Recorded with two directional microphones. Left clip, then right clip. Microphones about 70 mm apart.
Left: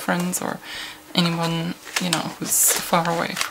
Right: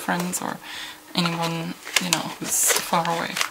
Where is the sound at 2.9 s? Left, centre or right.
Left.